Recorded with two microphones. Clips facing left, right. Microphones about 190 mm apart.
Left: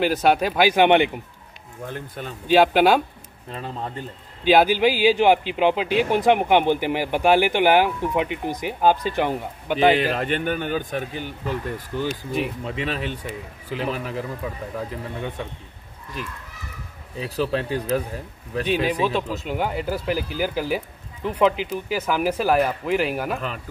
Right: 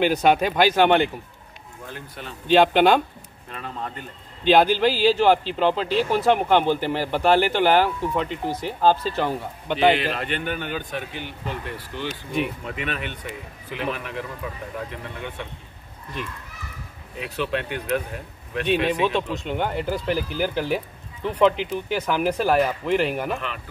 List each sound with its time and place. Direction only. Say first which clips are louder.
0.0 s speech: even; centre (ahead or behind)
2.4 s speech: even; 5° left (ahead or behind)
3.5 s speech: left 2 dB; 30° left (ahead or behind)
4.5 s speech: left 1 dB; 10° left (ahead or behind)
9.9 s speech: left 4 dB; 45° left (ahead or behind)
12.6 s a man's voice: left 3 dB; 30° left (ahead or behind)
17.2 s a man's voice: left 3 dB; 35° left (ahead or behind)
19.0 s speech: even; 5° left (ahead or behind)